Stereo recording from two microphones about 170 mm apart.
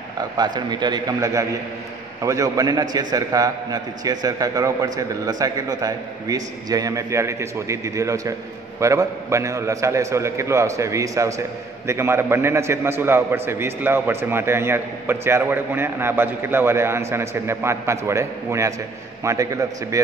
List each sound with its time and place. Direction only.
0.4 s a man's voice: 25° right (ahead or behind)